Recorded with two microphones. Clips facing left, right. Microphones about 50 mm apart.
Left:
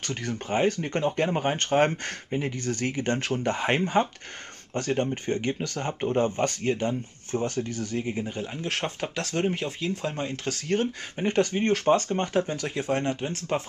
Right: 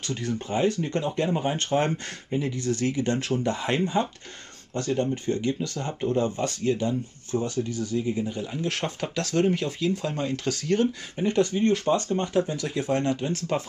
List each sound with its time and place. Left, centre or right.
0.0 s speech: left